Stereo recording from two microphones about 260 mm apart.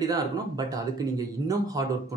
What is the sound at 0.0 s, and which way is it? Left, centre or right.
Speech, centre.